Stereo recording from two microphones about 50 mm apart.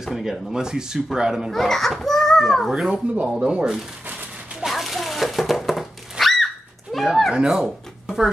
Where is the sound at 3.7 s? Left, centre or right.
Centre.